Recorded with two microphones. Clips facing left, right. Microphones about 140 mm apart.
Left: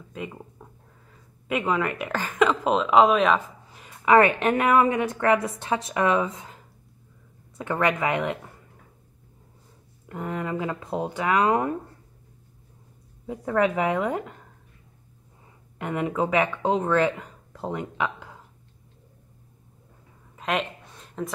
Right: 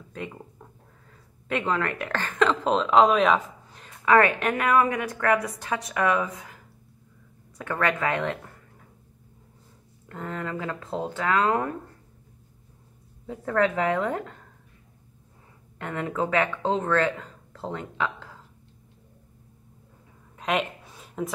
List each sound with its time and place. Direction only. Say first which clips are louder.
0.1 s speech: left 1 dB; 5° left (ahead or behind)
4.0 s a woman's voice: left 2 dB; 20° left (ahead or behind)
10.0 s speech: left 3 dB; 15° left (ahead or behind)
13.3 s speech: left 1 dB; 10° left (ahead or behind)
15.8 s speech: left 3 dB; 15° left (ahead or behind)
20.3 s a sound: right 1 dB; centre (ahead or behind)